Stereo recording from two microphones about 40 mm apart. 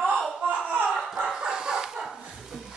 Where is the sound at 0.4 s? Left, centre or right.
Right.